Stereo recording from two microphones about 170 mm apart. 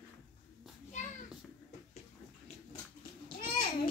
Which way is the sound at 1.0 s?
45° left (ahead or behind).